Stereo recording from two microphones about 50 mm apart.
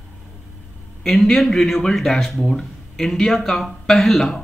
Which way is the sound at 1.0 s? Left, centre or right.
Centre.